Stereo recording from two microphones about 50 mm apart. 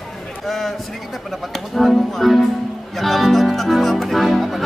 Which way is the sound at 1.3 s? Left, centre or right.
Centre.